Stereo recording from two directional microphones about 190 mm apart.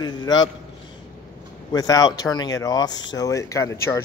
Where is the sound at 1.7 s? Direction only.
20° left (ahead or behind).